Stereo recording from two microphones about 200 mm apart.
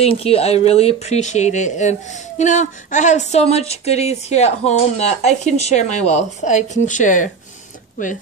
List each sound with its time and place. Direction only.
0.0 s speech: 30° left (ahead or behind)